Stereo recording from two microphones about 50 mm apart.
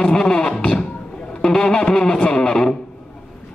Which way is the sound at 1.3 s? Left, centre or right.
Centre.